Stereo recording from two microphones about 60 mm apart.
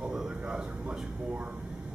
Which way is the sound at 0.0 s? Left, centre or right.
Centre.